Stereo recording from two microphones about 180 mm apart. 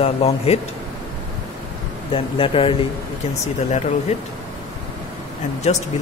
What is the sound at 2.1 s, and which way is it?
Speech, 30° left (ahead or behind).